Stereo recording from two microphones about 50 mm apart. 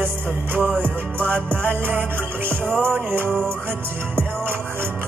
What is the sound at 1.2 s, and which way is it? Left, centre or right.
Music, right.